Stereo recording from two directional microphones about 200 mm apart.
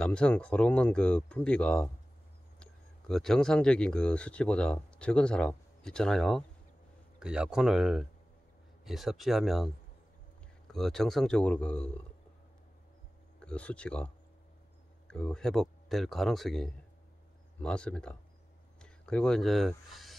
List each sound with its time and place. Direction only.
0.0 s speech: 5° left (ahead or behind)
10.7 s speech: centre (ahead or behind)
13.4 s speech: 5° left (ahead or behind)